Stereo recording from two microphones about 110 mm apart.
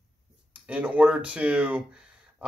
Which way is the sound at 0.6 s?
10° right (ahead or behind).